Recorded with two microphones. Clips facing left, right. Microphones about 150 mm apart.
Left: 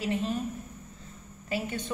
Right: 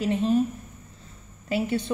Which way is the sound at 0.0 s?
35° right (ahead or behind).